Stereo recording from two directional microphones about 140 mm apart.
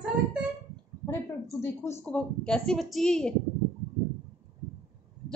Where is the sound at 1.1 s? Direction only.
20° left (ahead or behind).